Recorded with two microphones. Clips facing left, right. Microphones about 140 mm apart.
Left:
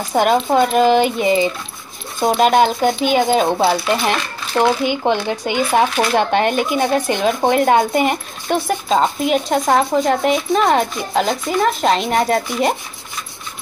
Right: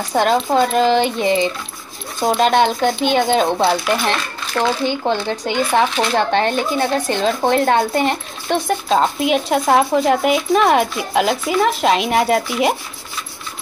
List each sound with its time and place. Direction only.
0.1 s speech: 5° left (ahead or behind)